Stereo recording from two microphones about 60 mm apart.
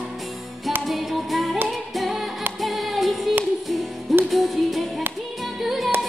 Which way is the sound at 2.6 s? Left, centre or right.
Centre.